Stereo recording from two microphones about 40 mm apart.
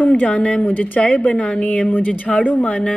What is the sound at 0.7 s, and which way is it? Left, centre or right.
Speech, left.